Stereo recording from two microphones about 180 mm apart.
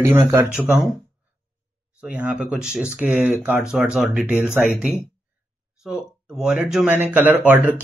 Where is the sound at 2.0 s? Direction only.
5° right (ahead or behind).